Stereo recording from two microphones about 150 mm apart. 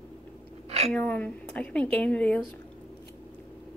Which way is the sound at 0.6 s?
45° right (ahead or behind).